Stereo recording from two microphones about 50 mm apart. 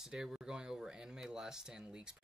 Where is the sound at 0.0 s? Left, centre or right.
Centre.